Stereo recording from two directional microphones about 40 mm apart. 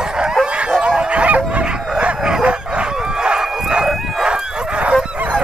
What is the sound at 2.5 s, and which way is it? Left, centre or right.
Chicken, right.